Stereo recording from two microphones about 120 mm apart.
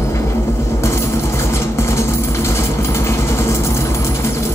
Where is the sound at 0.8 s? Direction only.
25° left (ahead or behind).